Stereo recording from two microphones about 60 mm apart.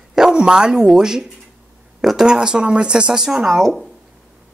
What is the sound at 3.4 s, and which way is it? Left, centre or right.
Speech, centre.